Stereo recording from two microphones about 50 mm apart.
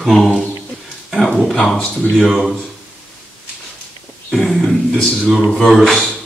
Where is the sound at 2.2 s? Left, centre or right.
Centre.